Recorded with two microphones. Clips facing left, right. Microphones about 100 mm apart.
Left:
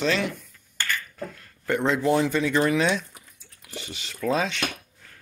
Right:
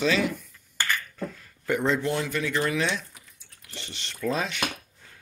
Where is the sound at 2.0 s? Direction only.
20° left (ahead or behind); by 4.6 s centre (ahead or behind).